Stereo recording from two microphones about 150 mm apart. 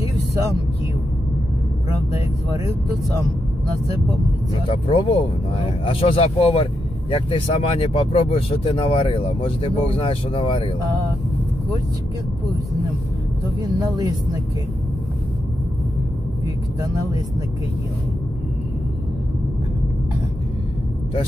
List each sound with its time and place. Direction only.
4.6 s speech: 40° left (ahead or behind)
13.6 s speech: 25° right (ahead or behind)